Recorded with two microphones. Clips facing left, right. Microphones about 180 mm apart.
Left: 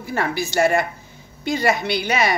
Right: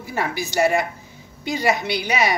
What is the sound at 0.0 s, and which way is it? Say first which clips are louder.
A woman's voice: left 2 dB; 15° right (ahead or behind).